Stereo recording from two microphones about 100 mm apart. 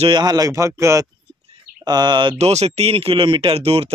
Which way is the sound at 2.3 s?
90° right.